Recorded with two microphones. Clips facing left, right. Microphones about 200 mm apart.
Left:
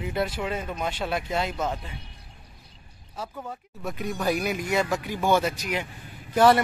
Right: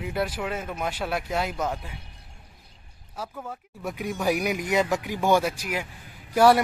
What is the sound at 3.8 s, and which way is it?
Speech, 15° right (ahead or behind).